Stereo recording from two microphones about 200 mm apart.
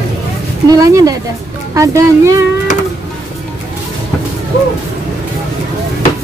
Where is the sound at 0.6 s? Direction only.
20° right (ahead or behind).